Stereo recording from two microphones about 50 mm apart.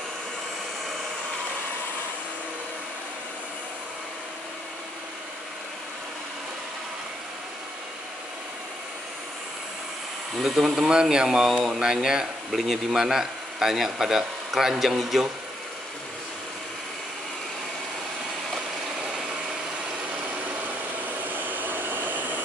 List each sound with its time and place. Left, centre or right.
10.4 s a man's voice: centre
21.3 s hair dryer: right